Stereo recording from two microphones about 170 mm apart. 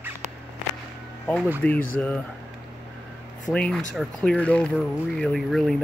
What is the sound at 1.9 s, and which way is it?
Speech, 10° left (ahead or behind).